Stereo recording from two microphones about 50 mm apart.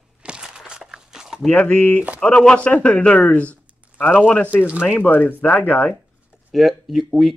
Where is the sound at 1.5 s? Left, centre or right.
Left.